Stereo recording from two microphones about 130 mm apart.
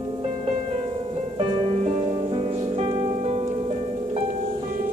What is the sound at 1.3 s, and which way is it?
Music, 50° right (ahead or behind).